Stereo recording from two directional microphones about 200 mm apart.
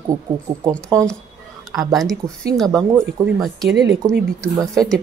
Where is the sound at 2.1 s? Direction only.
50° right (ahead or behind).